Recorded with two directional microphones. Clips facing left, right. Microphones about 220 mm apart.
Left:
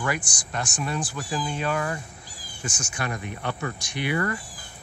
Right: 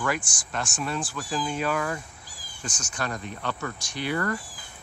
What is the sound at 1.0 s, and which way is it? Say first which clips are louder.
Speech: left 1 dB; 15° left (ahead or behind).